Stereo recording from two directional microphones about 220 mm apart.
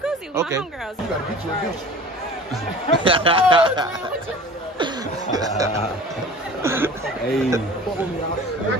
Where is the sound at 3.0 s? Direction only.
25° right (ahead or behind).